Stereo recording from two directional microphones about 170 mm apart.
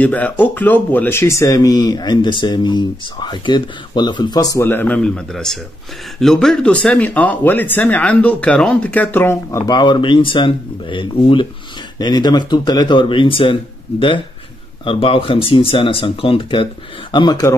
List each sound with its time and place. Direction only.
0.0 s speech: 10° left (ahead or behind)